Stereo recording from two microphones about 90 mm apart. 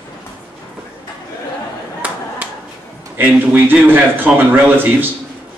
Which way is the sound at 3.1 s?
20° right (ahead or behind).